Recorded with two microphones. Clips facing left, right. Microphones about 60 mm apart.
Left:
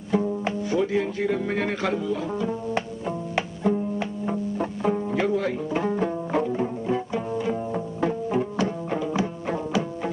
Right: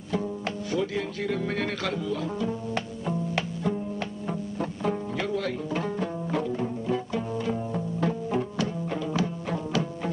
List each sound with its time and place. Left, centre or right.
0.1 s music: centre
8.5 s music: left